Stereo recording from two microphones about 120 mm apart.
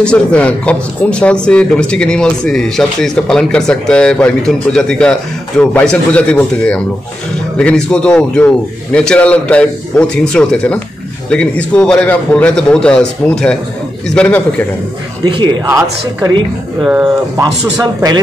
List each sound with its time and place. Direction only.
0.0 s speech: 10° left (ahead or behind)
15.2 s speech: 40° right (ahead or behind)
17.7 s speech: 35° right (ahead or behind)